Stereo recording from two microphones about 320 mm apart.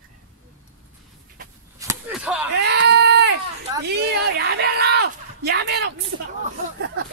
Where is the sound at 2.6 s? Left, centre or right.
Right.